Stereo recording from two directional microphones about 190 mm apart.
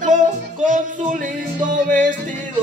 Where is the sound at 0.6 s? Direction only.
40° right (ahead or behind).